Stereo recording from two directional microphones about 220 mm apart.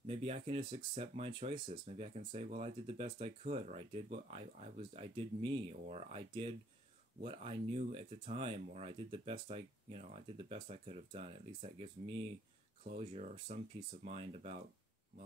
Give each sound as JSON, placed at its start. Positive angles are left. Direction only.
{"t": 0.0, "sound": "speech", "side_deg": -25}